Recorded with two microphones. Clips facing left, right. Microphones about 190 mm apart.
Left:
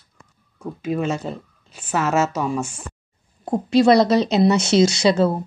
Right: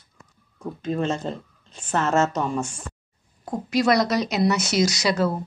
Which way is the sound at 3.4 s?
30° left (ahead or behind).